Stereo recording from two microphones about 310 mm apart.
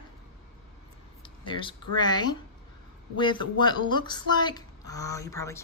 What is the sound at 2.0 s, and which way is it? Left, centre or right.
Speech, centre.